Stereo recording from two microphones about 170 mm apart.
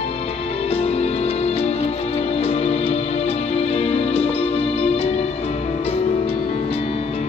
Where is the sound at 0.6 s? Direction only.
35° left (ahead or behind).